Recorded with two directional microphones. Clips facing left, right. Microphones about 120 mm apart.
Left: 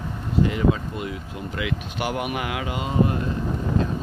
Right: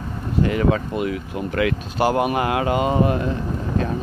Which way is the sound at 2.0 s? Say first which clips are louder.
Right 9 dB; 35° right (ahead or behind).